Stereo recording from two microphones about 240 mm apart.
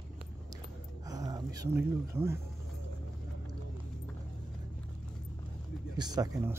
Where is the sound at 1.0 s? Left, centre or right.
Centre.